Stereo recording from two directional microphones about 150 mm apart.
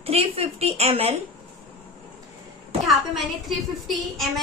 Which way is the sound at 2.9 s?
Centre (ahead or behind).